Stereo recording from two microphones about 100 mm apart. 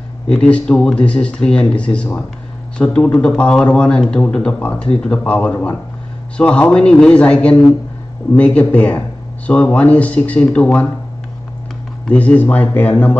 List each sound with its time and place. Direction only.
0.3 s speech: 10° left (ahead or behind)
12.1 s speech: 15° left (ahead or behind)